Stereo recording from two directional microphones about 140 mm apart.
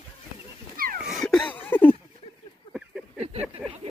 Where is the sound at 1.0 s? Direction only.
Centre (ahead or behind).